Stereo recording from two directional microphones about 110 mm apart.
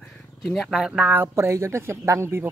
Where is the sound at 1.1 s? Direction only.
20° right (ahead or behind).